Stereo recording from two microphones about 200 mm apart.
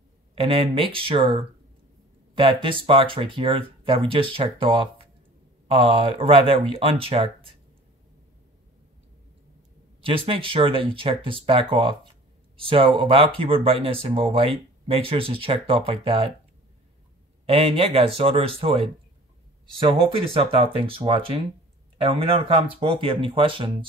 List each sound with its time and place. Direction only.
0.4 s speech: 25° right (ahead or behind)
10.0 s speech: 25° right (ahead or behind)
17.5 s speech: 30° right (ahead or behind)
19.8 s speech: 25° right (ahead or behind)